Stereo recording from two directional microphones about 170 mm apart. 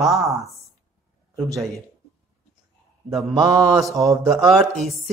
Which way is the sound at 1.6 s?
Centre (ahead or behind).